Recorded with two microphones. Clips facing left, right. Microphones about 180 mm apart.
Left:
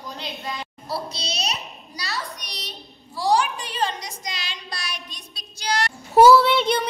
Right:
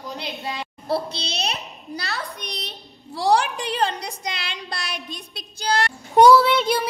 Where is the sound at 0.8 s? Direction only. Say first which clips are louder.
Right 5 dB; 55° right (ahead or behind).